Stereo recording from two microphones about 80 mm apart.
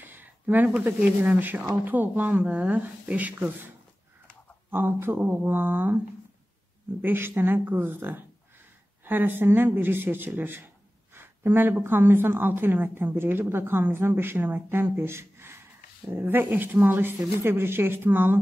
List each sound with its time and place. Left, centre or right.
0.0 s a woman's voice: right
7.0 s a woman's voice: right